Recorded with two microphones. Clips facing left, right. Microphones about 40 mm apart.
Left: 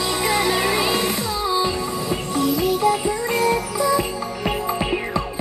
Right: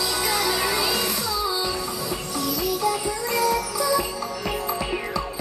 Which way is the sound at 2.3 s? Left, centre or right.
Left.